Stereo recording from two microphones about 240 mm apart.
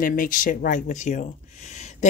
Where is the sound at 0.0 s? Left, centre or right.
Left.